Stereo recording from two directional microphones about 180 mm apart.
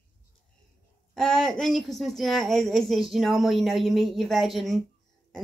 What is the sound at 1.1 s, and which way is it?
A woman's voice, centre (ahead or behind).